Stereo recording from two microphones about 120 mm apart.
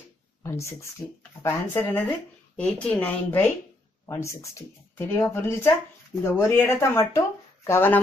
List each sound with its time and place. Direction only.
0.4 s speech: 20° left (ahead or behind)
4.0 s speech: 25° left (ahead or behind)